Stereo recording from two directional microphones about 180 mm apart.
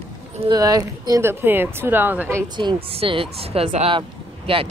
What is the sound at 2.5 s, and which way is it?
Speech, 30° right (ahead or behind).